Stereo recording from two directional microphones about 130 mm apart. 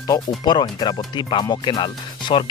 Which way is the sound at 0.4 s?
35° left (ahead or behind).